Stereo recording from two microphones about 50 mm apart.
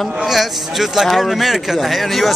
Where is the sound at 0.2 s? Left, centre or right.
Centre.